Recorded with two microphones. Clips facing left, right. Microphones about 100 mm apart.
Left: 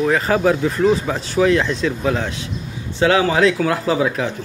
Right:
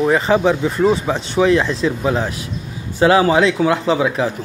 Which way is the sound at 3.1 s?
30° right (ahead or behind).